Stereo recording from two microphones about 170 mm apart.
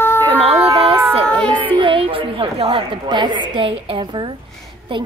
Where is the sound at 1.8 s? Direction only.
30° right (ahead or behind).